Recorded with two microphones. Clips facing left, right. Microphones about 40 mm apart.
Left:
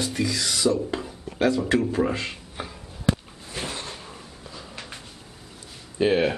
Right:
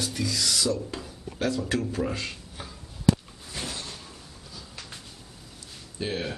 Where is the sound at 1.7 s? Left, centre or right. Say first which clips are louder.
Left 6 dB; left.